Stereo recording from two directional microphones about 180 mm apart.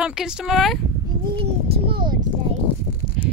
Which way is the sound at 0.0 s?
5° right (ahead or behind).